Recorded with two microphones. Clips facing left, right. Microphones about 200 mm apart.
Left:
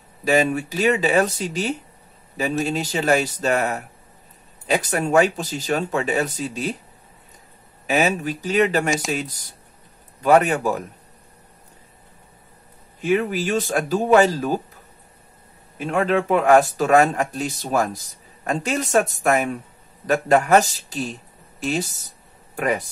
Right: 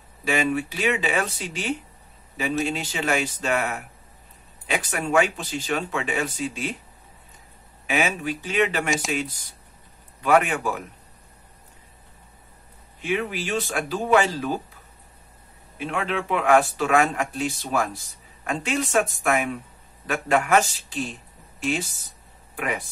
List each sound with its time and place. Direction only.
0.2 s speech: 40° left (ahead or behind)
7.8 s a sound: 40° left (ahead or behind)
8.2 s speech: 40° left (ahead or behind)
13.0 s speech: 45° left (ahead or behind)
15.8 s speech: 45° left (ahead or behind)